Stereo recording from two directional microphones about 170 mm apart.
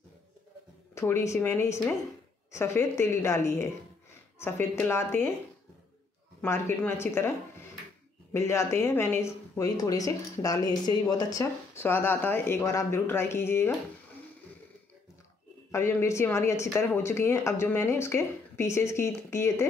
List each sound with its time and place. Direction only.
0.9 s speech: 15° left (ahead or behind)
6.4 s speech: 15° left (ahead or behind)
15.7 s speech: 15° left (ahead or behind)